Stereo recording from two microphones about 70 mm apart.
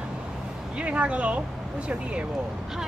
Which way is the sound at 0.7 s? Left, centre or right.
Centre.